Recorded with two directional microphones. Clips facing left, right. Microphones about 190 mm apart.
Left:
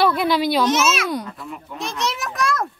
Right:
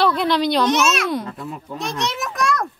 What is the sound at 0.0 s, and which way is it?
A child's voice, 5° left (ahead or behind).